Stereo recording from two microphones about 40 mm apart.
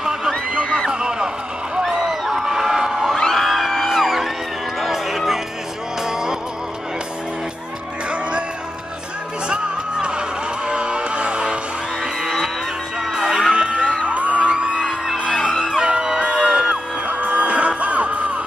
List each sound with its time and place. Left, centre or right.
0.0 s a sound: centre
1.8 s crowd: centre
3.2 s music: centre
8.1 s music: right
10.7 s music: right
13.0 s music: centre
13.5 s music: right
16.2 s music: right